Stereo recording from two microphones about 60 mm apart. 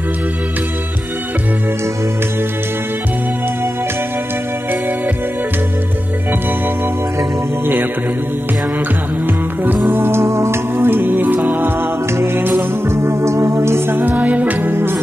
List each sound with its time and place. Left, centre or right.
10.0 s music: right